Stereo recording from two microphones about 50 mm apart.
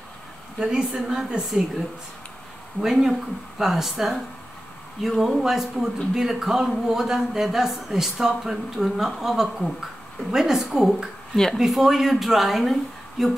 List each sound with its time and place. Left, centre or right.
0.6 s a man's voice: centre
2.8 s a man's voice: centre